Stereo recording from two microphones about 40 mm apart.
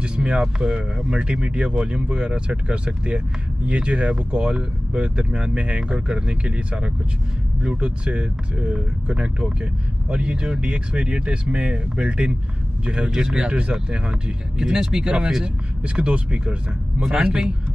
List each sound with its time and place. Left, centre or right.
0.0 s speech: right
13.5 s speech: right